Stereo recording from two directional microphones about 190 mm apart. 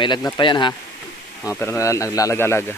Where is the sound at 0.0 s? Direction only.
25° left (ahead or behind).